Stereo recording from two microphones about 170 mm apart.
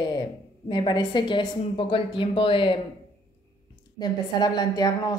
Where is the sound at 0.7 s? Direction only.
25° left (ahead or behind).